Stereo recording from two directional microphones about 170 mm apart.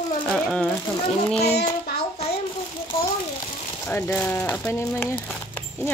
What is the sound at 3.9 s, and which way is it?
Speech, 10° left (ahead or behind).